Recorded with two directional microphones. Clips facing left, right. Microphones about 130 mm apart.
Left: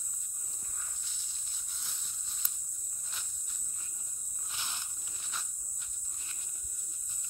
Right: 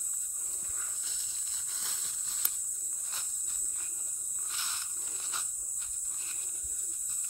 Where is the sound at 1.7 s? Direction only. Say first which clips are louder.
Right 3 dB; 90° right.